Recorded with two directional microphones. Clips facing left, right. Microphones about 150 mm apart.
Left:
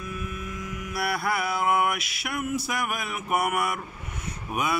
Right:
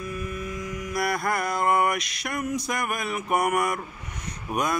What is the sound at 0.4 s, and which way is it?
Mantra, 5° left (ahead or behind).